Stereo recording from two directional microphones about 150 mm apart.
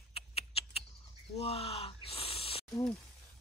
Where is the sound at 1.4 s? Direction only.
40° left (ahead or behind).